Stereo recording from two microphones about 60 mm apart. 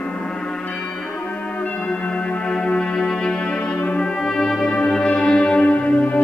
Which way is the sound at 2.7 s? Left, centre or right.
Centre.